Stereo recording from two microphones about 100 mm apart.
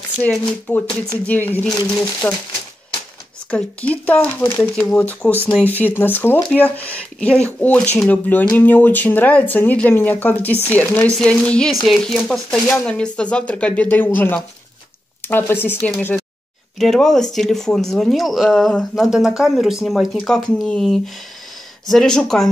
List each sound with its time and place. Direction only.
0.7 s speech: 15° left (ahead or behind)
3.4 s speech: 15° left (ahead or behind)
16.7 s speech: 5° left (ahead or behind)